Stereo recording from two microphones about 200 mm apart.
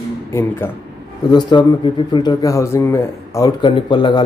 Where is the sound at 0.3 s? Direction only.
10° left (ahead or behind).